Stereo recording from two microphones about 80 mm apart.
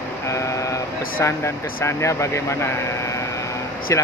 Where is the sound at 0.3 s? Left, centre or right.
Left.